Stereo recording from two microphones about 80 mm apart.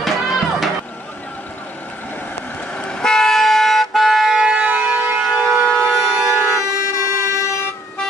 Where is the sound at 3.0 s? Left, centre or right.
Centre.